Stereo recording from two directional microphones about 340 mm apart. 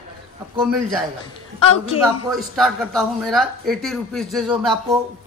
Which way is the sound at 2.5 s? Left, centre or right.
Centre.